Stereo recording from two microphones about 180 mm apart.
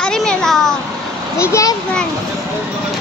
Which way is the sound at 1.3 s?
15° left (ahead or behind).